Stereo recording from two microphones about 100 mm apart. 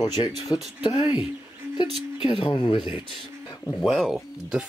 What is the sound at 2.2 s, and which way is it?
Speech, 55° left (ahead or behind).